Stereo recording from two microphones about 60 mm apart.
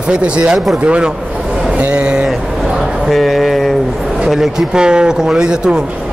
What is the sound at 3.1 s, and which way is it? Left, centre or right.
A man's voice, centre.